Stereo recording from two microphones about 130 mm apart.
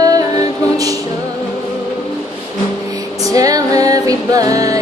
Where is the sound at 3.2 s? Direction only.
25° right (ahead or behind).